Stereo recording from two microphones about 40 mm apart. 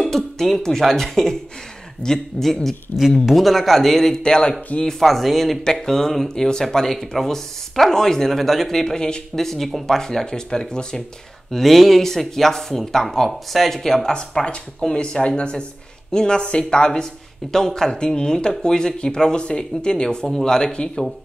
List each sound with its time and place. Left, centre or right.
0.0 s speech: centre
2.9 s speech: left
3.3 s speech: centre; by 4.6 s left
4.9 s speech: centre
5.8 s speech: centre
8.8 s speech: centre
11.5 s speech: centre
15.0 s speech: left